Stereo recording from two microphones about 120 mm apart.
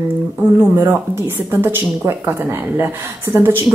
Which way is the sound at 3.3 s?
20° right (ahead or behind).